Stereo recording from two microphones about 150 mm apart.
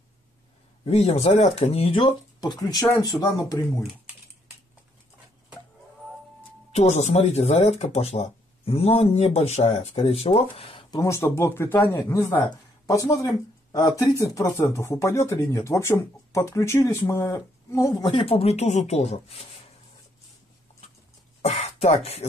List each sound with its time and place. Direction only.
0.8 s speech: 45° left (ahead or behind); by 3.5 s 25° left (ahead or behind)
6.7 s speech: 50° left (ahead or behind)
11.0 s speech: 20° left (ahead or behind); by 19.6 s 40° left (ahead or behind)
21.4 s speech: 45° left (ahead or behind)